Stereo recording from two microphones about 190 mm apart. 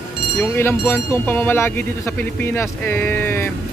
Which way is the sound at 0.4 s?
10° left (ahead or behind).